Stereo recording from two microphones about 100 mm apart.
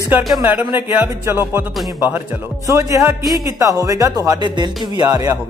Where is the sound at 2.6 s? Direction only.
30° right (ahead or behind).